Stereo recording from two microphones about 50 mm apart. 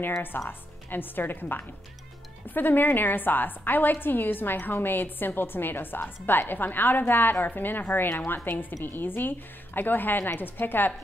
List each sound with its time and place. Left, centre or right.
0.5 s a woman's voice: left